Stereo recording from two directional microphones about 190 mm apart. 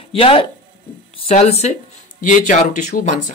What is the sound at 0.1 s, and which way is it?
Speech, 30° left (ahead or behind).